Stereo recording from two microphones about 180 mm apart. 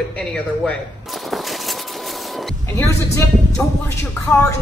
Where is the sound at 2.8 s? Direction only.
15° left (ahead or behind).